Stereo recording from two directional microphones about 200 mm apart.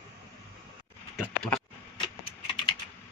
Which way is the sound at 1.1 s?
Centre (ahead or behind).